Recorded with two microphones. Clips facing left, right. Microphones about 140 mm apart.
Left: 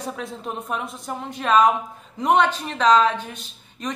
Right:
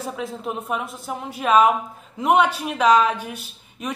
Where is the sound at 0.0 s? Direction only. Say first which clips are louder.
Right 2 dB; 5° right (ahead or behind).